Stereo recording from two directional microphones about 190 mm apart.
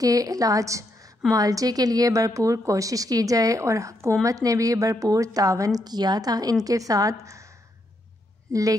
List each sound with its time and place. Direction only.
0.0 s a woman's voice: 20° right (ahead or behind)